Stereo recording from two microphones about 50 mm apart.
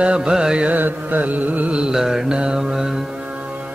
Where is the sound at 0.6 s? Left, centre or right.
Right.